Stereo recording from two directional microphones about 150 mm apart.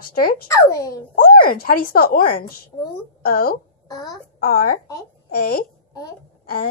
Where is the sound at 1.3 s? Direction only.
80° left.